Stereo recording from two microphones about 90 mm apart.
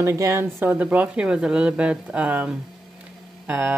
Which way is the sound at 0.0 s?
35° right (ahead or behind).